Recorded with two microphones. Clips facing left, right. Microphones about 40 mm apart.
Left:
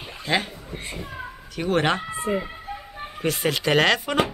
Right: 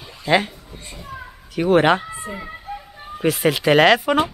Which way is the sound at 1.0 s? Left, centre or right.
Centre.